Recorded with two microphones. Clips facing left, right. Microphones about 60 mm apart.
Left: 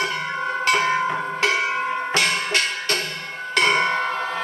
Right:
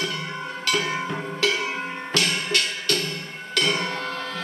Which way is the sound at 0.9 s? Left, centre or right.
Left.